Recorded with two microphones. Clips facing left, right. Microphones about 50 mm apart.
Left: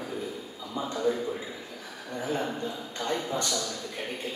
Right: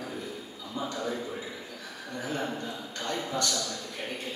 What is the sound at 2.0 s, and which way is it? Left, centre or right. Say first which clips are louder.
A man's voice: left 2 dB; centre.